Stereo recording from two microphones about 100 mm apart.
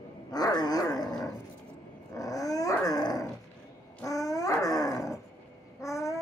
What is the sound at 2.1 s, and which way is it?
Dog, 35° left (ahead or behind).